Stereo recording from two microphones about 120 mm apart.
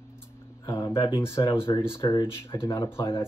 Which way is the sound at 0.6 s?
35° left (ahead or behind).